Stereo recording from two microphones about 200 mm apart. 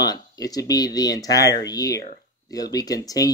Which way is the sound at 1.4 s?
60° left (ahead or behind).